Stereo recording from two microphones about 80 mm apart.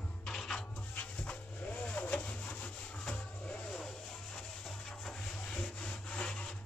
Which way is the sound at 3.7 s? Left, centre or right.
Centre.